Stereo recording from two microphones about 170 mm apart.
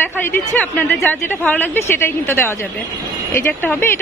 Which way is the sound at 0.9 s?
Centre (ahead or behind).